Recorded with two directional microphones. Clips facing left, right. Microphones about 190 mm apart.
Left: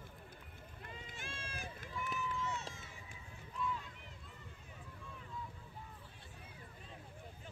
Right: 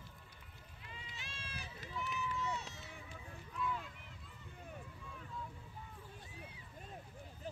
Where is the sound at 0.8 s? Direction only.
50° left (ahead or behind).